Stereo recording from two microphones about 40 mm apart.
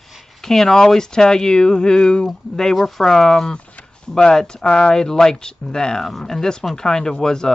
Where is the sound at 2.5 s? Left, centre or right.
Centre; by 4.9 s left.